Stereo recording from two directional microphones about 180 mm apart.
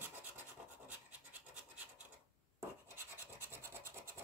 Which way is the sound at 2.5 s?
15° right (ahead or behind).